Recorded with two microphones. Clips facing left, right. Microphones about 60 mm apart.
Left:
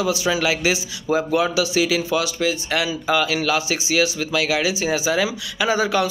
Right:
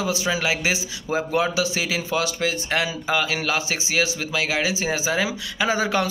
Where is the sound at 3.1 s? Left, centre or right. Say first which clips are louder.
Left 5 dB; right.